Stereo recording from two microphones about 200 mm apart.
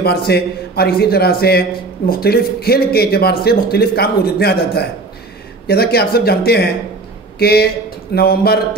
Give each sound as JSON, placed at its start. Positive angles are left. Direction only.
{"t": 0.0, "sound": "a man's voice", "side_deg": 55}